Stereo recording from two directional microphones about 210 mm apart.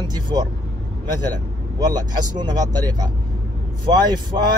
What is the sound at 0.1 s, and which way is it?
Speech, 20° right (ahead or behind).